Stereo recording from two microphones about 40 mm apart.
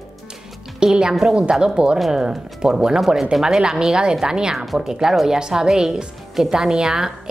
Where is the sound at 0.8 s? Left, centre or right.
Centre.